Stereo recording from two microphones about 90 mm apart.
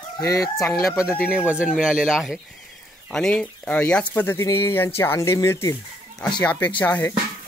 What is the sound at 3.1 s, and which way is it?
Speech, 5° left (ahead or behind).